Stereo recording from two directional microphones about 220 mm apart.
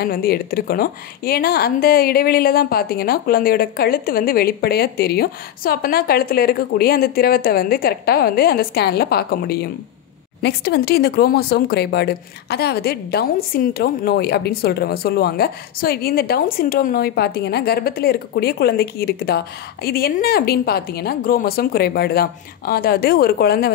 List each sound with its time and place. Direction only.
0.0 s speech: 45° left (ahead or behind)